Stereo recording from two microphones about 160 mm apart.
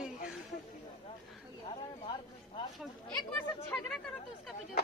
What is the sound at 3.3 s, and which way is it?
Speech, 10° left (ahead or behind).